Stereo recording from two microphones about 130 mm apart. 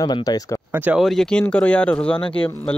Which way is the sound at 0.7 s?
15° right (ahead or behind).